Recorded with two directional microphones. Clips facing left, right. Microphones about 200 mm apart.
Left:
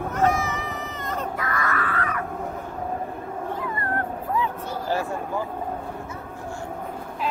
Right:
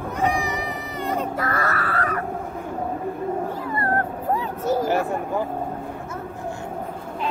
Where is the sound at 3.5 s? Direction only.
40° right (ahead or behind).